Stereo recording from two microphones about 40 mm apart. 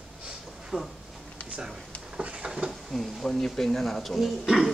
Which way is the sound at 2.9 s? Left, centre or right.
Centre.